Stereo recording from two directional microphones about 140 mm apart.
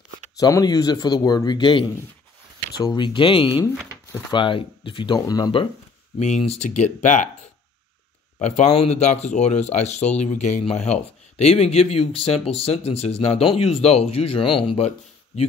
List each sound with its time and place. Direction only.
0.4 s speech: 25° left (ahead or behind)
6.1 s speech: 50° left (ahead or behind)
6.7 s speech: 60° left (ahead or behind)
8.4 s speech: 55° left (ahead or behind)
10.6 s speech: 50° left (ahead or behind)